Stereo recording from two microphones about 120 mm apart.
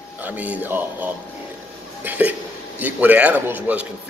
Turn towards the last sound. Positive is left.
turn(degrees=-15)  # may be behind; listen again after turning